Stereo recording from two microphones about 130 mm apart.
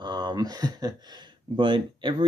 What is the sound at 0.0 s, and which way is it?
Speech, 35° right (ahead or behind).